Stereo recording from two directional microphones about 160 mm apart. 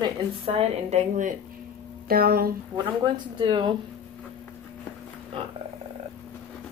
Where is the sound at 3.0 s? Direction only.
30° right (ahead or behind).